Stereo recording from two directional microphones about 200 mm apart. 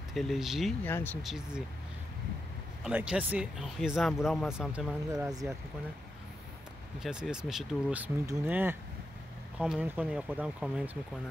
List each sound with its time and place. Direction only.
0.1 s speech: centre (ahead or behind)
0.8 s speech: 10° left (ahead or behind)
2.8 s speech: 5° right (ahead or behind)
5.1 s speech: 15° right (ahead or behind)
7.0 s speech: 5° right (ahead or behind)